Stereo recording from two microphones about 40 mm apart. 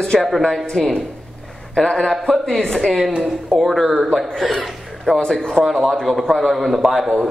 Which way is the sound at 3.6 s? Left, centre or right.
Centre.